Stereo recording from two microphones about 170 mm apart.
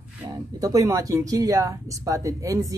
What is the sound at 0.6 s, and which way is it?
Speech, 20° right (ahead or behind).